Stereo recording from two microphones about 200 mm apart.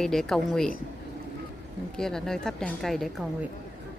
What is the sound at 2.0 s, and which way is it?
A woman's voice, centre (ahead or behind).